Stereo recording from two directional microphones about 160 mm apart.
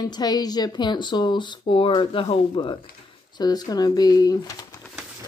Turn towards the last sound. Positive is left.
turn(degrees=20)  # may be behind; listen again after turning